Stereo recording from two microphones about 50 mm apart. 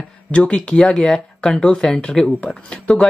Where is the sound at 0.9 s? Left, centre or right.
Centre.